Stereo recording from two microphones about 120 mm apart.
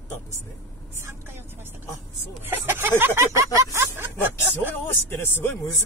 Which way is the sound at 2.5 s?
20° right (ahead or behind).